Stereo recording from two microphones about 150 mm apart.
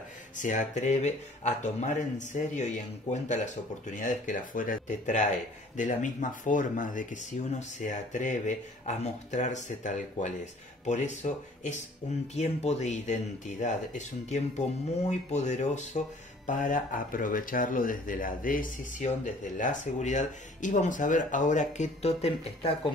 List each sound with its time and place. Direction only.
0.4 s speech: 55° left (ahead or behind)